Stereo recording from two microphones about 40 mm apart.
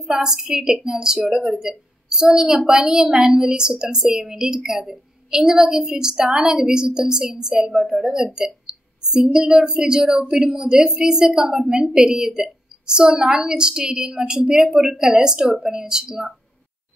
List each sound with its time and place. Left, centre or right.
0.0 s a woman's voice: centre